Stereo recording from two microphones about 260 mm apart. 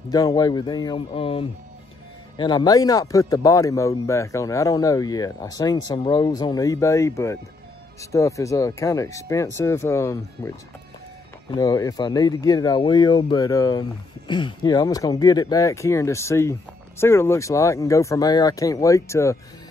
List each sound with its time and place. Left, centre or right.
0.1 s speech: centre
11.5 s speech: centre